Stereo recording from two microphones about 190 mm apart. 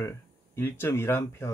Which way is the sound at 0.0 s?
15° left (ahead or behind).